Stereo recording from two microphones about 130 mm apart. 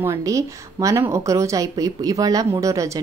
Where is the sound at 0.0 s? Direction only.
25° right (ahead or behind).